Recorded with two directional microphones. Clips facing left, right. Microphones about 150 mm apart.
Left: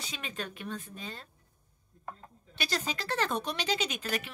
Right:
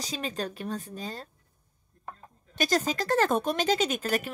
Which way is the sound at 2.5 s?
45° right (ahead or behind).